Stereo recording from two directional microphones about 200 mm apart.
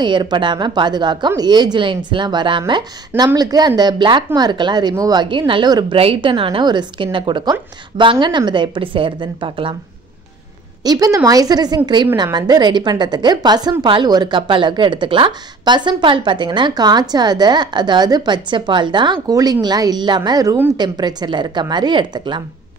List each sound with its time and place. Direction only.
0.0 s a woman's voice: 20° right (ahead or behind)
10.8 s a woman's voice: 20° right (ahead or behind)